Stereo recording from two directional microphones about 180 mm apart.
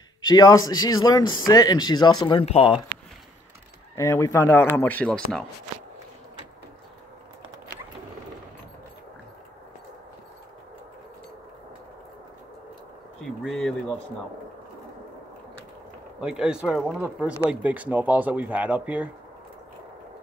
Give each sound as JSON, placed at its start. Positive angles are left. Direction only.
{"t": 0.2, "sound": "speech", "side_deg": 20}
{"t": 3.9, "sound": "speech", "side_deg": 15}
{"t": 13.2, "sound": "speech", "side_deg": 0}
{"t": 16.2, "sound": "speech", "side_deg": -5}